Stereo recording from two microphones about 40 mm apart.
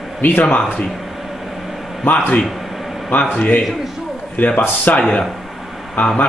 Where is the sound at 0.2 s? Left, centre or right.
Left.